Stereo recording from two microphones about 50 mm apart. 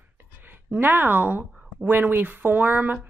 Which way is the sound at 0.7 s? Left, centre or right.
Right.